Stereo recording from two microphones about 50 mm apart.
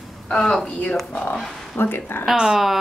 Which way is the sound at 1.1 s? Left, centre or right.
Left.